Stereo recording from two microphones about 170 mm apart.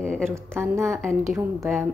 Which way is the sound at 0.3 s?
15° right (ahead or behind).